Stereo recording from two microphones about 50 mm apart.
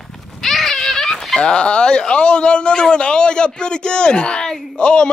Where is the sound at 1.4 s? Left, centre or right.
Centre.